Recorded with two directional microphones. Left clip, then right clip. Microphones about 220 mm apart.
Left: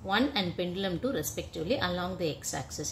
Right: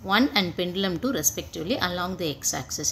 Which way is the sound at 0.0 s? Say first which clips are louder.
Right 6 dB; 30° right (ahead or behind).